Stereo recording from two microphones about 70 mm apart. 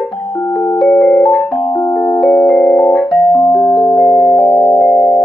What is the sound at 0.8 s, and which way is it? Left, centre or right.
Music, centre.